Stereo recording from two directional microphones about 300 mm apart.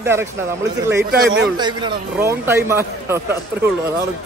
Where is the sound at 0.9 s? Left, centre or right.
Right.